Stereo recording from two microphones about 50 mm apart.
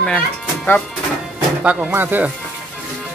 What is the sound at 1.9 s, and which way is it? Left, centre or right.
Speech, right.